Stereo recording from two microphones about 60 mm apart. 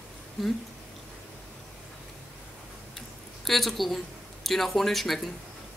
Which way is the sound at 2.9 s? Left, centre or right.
Centre.